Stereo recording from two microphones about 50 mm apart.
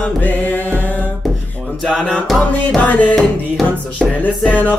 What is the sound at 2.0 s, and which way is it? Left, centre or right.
Music, centre.